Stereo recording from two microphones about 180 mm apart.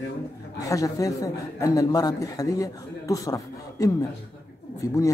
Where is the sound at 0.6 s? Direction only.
20° left (ahead or behind).